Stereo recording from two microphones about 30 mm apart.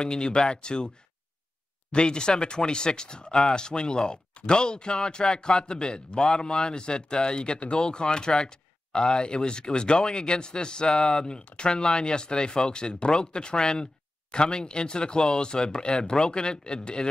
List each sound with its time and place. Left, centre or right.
0.0 s speech: left